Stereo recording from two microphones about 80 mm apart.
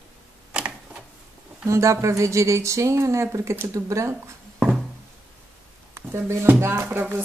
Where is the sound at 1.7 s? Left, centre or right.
Right.